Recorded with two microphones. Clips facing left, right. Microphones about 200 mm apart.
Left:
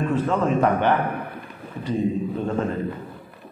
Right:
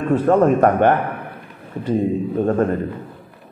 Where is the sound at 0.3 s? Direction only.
60° right (ahead or behind).